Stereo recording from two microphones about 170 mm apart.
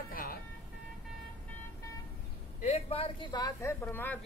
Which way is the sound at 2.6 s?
35° left (ahead or behind).